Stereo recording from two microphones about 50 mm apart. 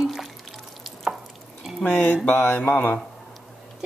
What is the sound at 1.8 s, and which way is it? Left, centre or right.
Mantra, left.